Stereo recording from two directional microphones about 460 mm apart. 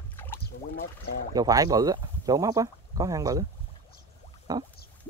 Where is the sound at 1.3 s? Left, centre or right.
Centre.